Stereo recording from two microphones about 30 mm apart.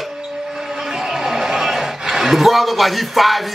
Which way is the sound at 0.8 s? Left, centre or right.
Centre.